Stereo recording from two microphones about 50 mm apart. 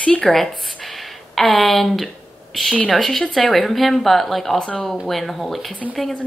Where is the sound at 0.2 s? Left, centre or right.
Centre.